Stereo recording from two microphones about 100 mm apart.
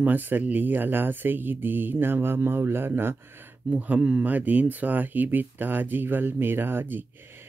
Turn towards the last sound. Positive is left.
turn(degrees=-20)  # may be behind; listen again after turning